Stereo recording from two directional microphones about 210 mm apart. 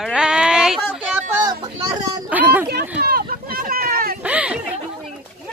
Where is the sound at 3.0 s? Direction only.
45° right (ahead or behind).